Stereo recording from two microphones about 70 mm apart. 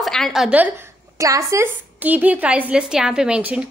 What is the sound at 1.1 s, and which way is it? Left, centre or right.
Speech, right.